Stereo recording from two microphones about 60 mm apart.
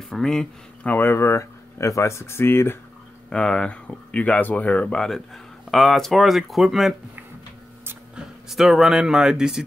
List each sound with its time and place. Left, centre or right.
0.1 s speech: centre
0.8 s speech: left
3.3 s speech: centre
4.9 s speech: centre
8.5 s speech: centre